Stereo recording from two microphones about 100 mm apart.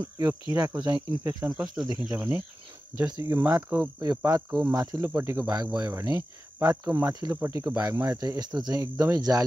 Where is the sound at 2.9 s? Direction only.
30° right (ahead or behind).